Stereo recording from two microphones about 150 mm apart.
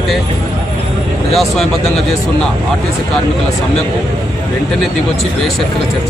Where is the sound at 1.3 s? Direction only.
Centre (ahead or behind).